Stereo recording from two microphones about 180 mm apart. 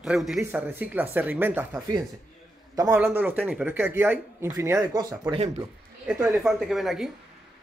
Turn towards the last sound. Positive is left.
turn(degrees=0)  # may be behind; listen again after turning